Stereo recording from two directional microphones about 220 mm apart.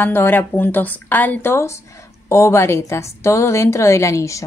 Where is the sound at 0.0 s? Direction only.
10° left (ahead or behind).